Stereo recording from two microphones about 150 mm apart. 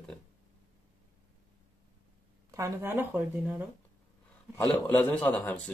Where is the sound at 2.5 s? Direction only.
20° right (ahead or behind).